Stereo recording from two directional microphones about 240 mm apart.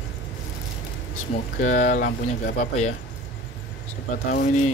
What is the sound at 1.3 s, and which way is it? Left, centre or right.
Speech, left.